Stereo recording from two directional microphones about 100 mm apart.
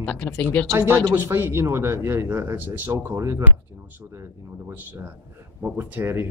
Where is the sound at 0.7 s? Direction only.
25° right (ahead or behind).